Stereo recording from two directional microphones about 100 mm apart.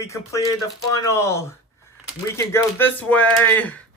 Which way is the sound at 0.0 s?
30° left (ahead or behind).